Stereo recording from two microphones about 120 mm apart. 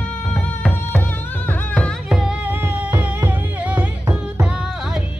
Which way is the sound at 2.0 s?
5° right (ahead or behind).